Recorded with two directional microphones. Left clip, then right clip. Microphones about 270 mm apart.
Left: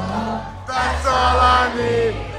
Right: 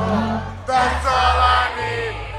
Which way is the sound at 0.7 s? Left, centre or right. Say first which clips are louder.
Right 2 dB; left.